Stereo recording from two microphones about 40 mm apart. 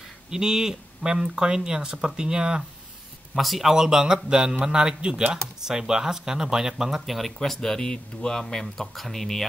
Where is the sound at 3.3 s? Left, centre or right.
Centre.